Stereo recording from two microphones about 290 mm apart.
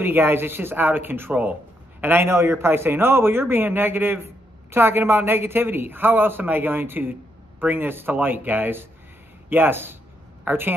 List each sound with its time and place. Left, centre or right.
0.0 s a man's voice: centre